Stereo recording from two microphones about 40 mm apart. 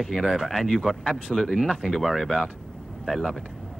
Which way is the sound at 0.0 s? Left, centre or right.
Centre.